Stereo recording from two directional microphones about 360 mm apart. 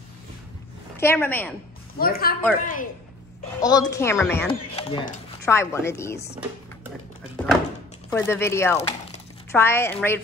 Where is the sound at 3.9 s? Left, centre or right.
Centre.